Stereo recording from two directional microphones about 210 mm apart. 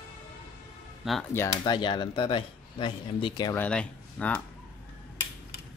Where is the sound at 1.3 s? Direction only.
15° left (ahead or behind).